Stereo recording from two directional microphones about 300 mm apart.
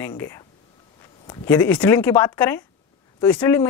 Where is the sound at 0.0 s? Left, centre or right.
Centre.